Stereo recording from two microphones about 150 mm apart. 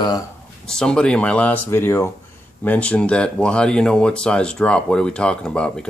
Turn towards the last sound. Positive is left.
turn(degrees=5)  # may be behind; listen again after turning